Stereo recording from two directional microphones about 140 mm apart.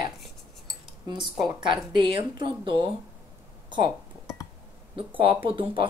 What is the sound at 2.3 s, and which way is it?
Speech, 35° right (ahead or behind).